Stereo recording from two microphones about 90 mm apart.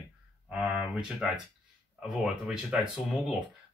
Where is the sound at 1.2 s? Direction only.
5° right (ahead or behind).